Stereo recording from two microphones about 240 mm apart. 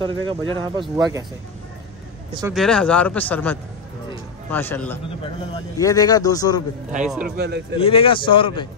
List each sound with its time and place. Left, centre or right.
0.0 s speech: right
2.5 s a man's voice: centre
7.2 s speech: right
7.7 s speech: left